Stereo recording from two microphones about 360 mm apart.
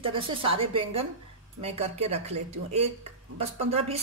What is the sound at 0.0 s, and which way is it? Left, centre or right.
Speech, centre.